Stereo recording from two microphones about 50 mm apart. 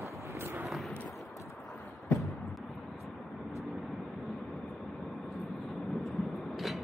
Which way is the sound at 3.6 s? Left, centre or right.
Centre.